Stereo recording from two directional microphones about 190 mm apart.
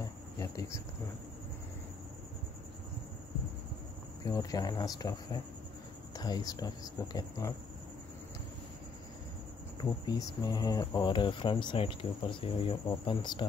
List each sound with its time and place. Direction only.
0.4 s speech: 15° left (ahead or behind)
4.3 s speech: 20° left (ahead or behind)
9.8 s speech: 20° left (ahead or behind)